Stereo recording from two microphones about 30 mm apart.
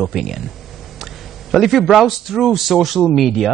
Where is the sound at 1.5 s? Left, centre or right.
Centre.